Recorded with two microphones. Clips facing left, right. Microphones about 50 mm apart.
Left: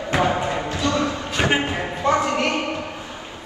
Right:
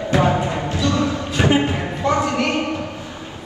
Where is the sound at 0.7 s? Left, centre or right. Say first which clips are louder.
Right 3 dB; left.